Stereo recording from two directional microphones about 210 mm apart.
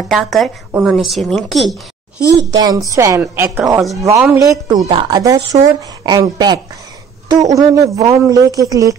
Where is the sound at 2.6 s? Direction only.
20° right (ahead or behind).